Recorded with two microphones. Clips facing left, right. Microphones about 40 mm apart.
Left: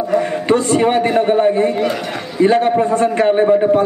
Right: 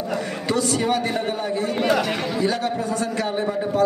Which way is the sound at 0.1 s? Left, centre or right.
Left.